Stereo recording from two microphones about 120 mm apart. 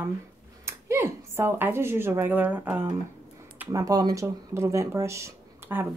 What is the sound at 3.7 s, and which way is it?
Speech, 30° right (ahead or behind).